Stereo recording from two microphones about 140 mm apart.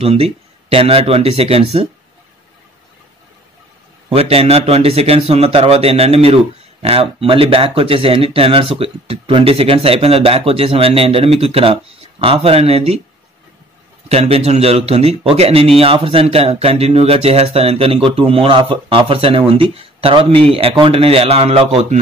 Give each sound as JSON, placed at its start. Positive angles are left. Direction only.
{"t": 0.0, "sound": "a man's voice", "side_deg": -45}
{"t": 4.1, "sound": "a man's voice", "side_deg": -45}
{"t": 14.0, "sound": "a man's voice", "side_deg": -50}